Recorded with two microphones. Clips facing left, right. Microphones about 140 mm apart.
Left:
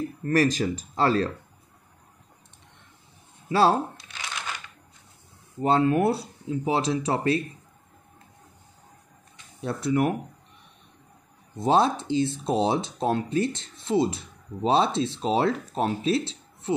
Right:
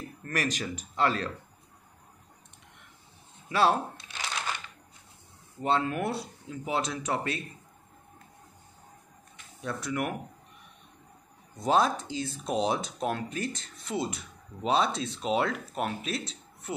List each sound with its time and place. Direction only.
0.2 s speech: 35° left (ahead or behind)
3.4 s speech: 30° left (ahead or behind)
5.6 s speech: 35° left (ahead or behind)
9.6 s speech: 30° left (ahead or behind)
11.5 s speech: 25° left (ahead or behind)